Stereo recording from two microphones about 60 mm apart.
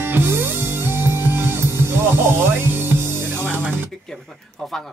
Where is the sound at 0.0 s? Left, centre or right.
Right.